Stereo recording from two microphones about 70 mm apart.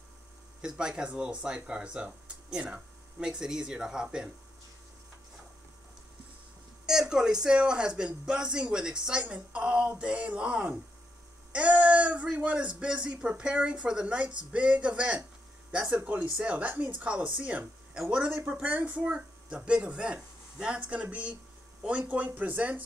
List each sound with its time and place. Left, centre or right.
0.6 s speech: centre
6.9 s a sound: centre
7.4 s speech: centre